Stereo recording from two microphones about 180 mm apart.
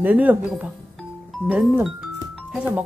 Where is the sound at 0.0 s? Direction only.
10° right (ahead or behind).